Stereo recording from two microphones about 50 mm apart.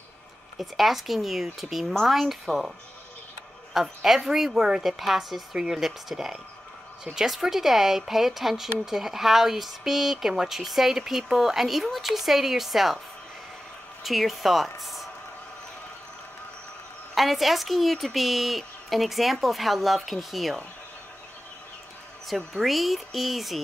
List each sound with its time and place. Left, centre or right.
0.6 s speech: centre
3.7 s a woman's voice: centre
14.0 s speech: centre
17.1 s speech: centre
22.3 s speech: centre